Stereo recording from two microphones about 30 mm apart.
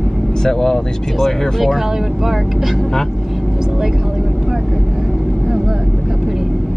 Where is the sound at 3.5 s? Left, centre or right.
Centre.